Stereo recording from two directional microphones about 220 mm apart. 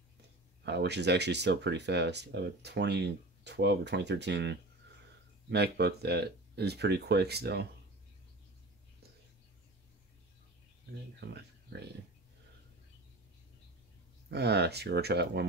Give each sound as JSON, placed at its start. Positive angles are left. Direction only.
{"t": 0.7, "sound": "speech", "side_deg": -50}
{"t": 11.2, "sound": "speech", "side_deg": -50}
{"t": 14.3, "sound": "speech", "side_deg": -50}